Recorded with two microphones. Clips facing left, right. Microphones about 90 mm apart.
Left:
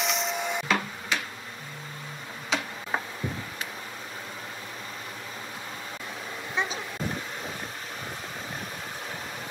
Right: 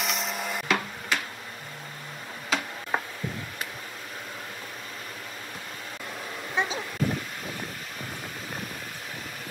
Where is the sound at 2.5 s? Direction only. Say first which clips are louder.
Right 1 dB; centre (ahead or behind).